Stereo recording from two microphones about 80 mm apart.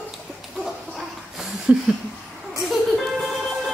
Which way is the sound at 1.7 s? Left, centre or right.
Centre.